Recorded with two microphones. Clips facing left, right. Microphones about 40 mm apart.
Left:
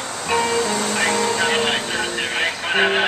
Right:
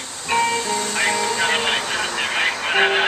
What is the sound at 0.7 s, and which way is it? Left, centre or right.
Music, left.